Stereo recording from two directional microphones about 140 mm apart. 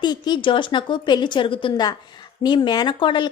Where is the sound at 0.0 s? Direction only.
30° left (ahead or behind).